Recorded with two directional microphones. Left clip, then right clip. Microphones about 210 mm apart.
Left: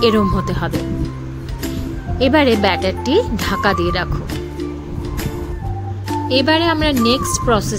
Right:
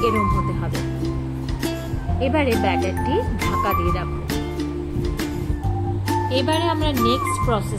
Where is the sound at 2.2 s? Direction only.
50° left (ahead or behind).